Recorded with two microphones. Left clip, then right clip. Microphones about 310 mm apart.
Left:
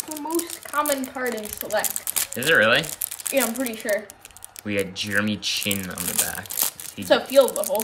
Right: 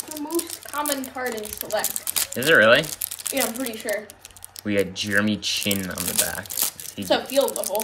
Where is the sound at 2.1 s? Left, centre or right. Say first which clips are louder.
Right 2 dB; centre.